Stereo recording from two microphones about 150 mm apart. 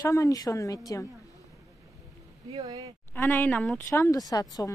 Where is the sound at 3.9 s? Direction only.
20° left (ahead or behind).